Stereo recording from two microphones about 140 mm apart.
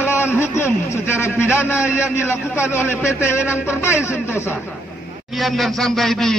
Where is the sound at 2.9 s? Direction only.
15° left (ahead or behind).